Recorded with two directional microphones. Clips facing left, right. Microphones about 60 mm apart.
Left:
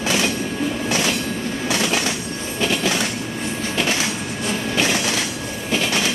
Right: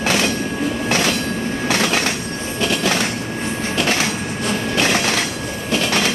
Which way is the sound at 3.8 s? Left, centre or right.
Right.